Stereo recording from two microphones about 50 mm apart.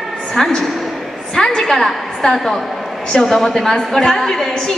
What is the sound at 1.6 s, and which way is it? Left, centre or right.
A woman's voice, centre.